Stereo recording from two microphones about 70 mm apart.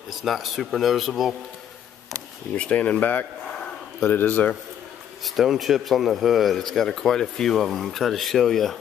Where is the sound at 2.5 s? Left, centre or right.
Centre.